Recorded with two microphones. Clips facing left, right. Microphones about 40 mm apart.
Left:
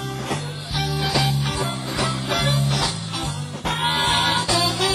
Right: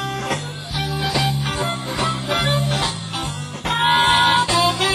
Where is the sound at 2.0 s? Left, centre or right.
Right.